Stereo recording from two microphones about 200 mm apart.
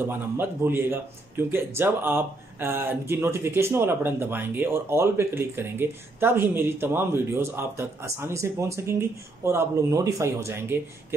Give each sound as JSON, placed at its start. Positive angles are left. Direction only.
{"t": 0.1, "sound": "speech", "side_deg": -10}